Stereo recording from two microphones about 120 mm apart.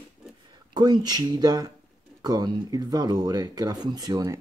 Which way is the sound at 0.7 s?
35° right (ahead or behind).